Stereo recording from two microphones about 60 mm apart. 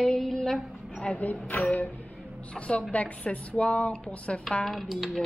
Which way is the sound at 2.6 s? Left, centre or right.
Left.